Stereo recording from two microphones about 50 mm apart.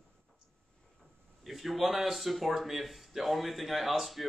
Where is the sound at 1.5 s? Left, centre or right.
Centre.